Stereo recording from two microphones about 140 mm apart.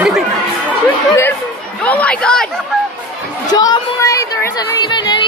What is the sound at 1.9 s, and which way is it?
Chatter, 10° left (ahead or behind).